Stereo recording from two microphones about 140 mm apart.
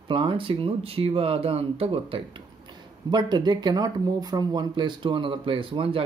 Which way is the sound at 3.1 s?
30° right (ahead or behind).